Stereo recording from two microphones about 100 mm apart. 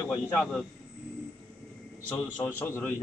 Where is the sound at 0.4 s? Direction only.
5° left (ahead or behind).